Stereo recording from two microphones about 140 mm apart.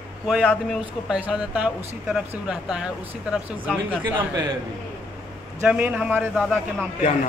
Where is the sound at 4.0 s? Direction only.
30° right (ahead or behind).